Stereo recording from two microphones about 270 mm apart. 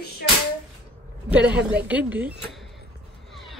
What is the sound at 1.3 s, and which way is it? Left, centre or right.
Speech, centre.